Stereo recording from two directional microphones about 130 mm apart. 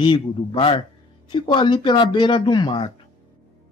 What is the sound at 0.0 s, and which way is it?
Speech, 40° left (ahead or behind).